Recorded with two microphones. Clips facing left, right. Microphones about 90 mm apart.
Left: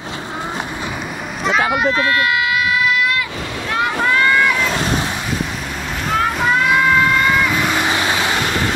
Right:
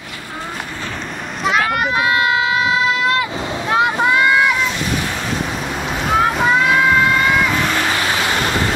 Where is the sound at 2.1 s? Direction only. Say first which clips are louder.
Right 1 dB; 25° right (ahead or behind).